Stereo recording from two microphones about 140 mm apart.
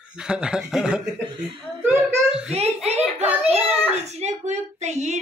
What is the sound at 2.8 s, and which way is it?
A child's voice, 50° right (ahead or behind).